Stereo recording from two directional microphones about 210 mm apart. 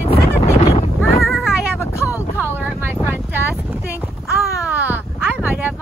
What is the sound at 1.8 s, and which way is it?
Vehicle, 15° left (ahead or behind).